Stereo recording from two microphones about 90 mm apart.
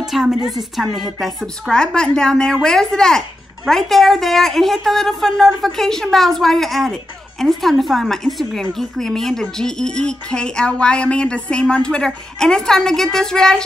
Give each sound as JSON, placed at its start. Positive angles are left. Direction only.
{"t": 0.0, "sound": "a woman's voice", "side_deg": -5}